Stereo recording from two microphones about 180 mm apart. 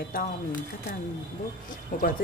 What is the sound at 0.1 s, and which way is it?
Speech, 50° left (ahead or behind).